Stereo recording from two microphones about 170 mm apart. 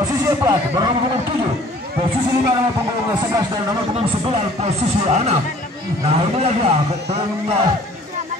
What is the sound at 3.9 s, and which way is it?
Speech, 35° right (ahead or behind).